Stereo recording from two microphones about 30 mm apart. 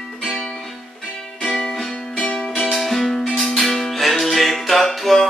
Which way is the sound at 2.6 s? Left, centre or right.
Centre.